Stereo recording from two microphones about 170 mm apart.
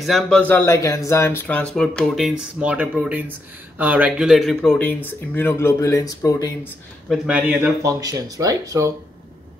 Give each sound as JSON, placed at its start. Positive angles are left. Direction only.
{"t": 0.0, "sound": "speech", "side_deg": 5}
{"t": 7.1, "sound": "speech", "side_deg": -5}